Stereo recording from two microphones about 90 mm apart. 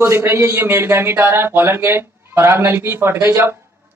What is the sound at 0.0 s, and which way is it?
Speech, 30° right (ahead or behind).